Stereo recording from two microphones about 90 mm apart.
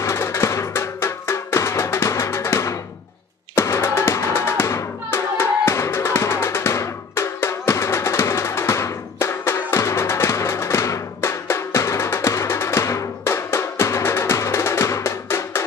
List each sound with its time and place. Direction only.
0.0 s music: 30° left (ahead or behind)